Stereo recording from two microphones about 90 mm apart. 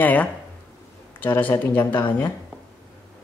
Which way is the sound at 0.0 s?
20° left (ahead or behind).